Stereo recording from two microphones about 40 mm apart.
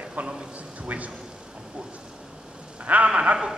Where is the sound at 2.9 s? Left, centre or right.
Right.